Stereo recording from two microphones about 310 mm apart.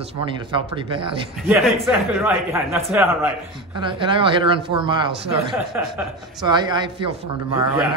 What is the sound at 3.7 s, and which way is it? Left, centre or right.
Speech, centre.